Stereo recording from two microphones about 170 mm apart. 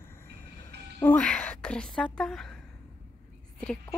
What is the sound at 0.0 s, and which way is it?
Train, 15° left (ahead or behind).